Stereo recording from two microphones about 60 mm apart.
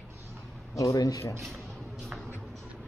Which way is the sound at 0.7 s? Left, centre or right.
Left.